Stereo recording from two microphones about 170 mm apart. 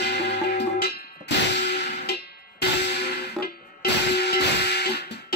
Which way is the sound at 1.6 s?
85° left.